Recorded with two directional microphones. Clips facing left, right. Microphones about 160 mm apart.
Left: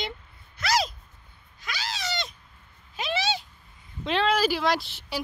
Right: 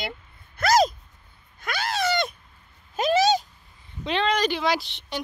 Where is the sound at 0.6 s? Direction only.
45° right (ahead or behind).